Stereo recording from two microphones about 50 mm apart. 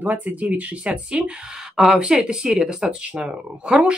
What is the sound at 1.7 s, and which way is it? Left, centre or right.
Speech, centre.